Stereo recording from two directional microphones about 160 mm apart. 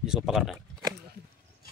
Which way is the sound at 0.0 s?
Centre (ahead or behind).